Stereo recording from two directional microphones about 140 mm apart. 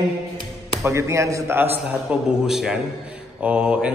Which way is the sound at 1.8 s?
5° right (ahead or behind).